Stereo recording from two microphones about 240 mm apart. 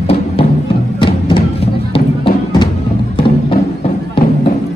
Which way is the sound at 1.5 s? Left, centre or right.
Left.